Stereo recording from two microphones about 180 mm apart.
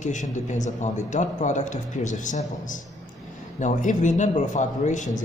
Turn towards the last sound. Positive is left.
turn(degrees=45)  # may be behind; listen again after turning